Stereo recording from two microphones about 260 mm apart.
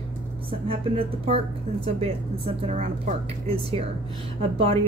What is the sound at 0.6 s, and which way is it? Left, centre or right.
A woman's voice, right.